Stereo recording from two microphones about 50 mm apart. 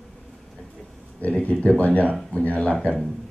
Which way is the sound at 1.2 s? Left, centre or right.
Left.